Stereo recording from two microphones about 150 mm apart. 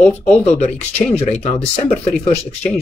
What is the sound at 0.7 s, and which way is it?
Speech, 10° left (ahead or behind).